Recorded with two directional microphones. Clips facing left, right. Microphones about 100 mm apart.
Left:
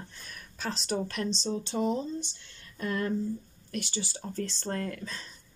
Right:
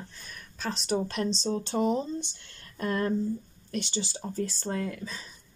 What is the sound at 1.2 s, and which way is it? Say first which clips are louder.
Speech: right 3 dB; 40° right (ahead or behind).